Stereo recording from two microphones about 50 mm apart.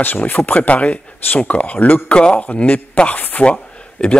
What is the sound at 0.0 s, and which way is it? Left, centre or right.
Speech, left.